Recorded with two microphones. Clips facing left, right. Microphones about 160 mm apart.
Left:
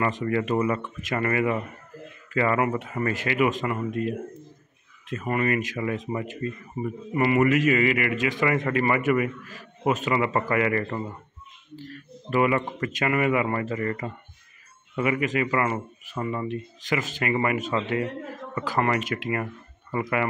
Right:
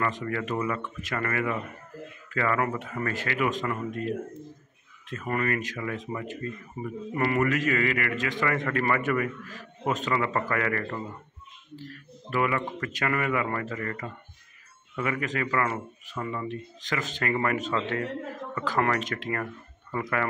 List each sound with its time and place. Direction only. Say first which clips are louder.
0.2 s a man's voice: left 6 dB; 20° left (ahead or behind)
7.2 s a man's voice: left 5 dB; 10° left (ahead or behind)
12.3 s a man's voice: left 4 dB; 20° left (ahead or behind)